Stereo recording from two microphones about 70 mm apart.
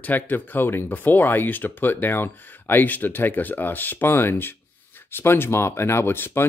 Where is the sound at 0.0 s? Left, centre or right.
Left.